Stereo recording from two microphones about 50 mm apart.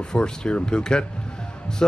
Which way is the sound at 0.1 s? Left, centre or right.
Centre.